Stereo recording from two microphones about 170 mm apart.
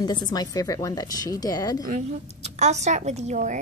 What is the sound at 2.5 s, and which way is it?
Speech, 40° right (ahead or behind).